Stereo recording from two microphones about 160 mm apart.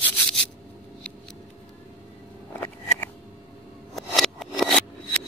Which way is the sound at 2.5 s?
15° left (ahead or behind).